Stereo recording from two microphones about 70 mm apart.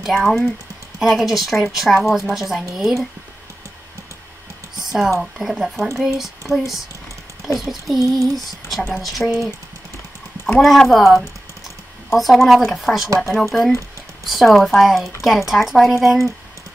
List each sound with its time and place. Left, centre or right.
0.0 s a woman's voice: centre
5.2 s a woman's voice: centre
8.0 s a sound: right
8.5 s a woman's voice: centre
10.6 s a woman's voice: centre